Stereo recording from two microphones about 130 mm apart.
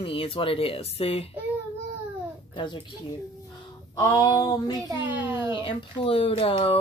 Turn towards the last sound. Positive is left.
turn(degrees=45)  # may be behind; listen again after turning